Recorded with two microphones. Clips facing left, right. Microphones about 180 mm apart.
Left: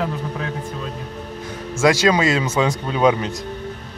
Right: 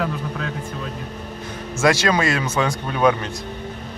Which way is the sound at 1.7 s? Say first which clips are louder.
Left 2 dB; 15° left (ahead or behind).